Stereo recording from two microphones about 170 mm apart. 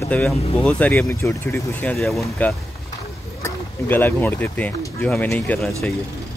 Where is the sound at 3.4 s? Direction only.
15° left (ahead or behind).